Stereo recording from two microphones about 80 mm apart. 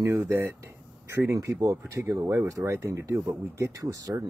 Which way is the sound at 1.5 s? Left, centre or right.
Right.